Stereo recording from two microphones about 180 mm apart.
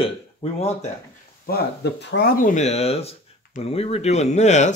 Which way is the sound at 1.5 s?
60° left (ahead or behind).